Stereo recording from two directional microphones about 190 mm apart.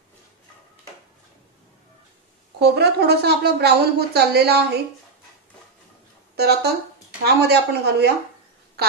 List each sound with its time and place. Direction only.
2.6 s a woman's voice: 60° right (ahead or behind)
6.3 s a woman's voice: 60° right (ahead or behind)